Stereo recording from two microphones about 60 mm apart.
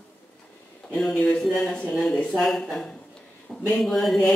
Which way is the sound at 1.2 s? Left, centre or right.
Centre.